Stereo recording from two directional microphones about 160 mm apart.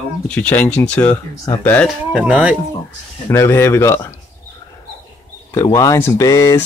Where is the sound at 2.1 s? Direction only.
5° right (ahead or behind).